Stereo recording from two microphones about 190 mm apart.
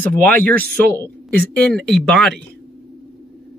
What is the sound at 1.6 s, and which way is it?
Speech, 5° left (ahead or behind).